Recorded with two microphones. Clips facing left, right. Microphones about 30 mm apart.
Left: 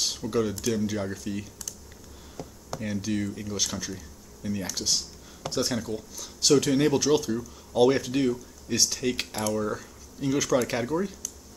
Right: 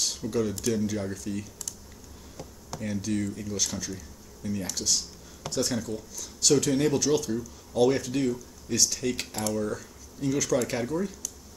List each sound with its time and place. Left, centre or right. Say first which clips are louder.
0.3 s speech: left 1 dB; centre
2.8 s speech: even; centre